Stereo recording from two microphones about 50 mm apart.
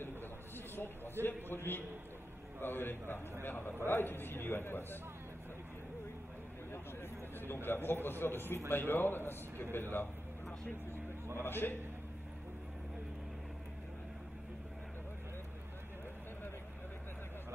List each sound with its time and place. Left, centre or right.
1.2 s a man's voice: left
6.7 s a man's voice: left
11.4 s a man's voice: left